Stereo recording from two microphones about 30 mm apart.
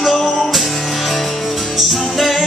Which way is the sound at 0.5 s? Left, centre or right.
Centre.